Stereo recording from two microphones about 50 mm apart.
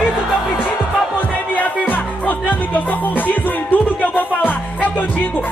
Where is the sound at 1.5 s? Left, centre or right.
Left.